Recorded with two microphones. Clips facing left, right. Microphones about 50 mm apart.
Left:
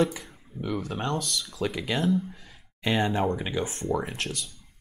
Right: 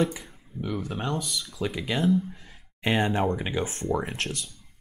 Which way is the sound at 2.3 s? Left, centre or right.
Right.